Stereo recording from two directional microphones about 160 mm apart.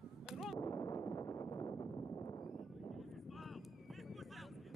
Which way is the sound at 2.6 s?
Centre (ahead or behind).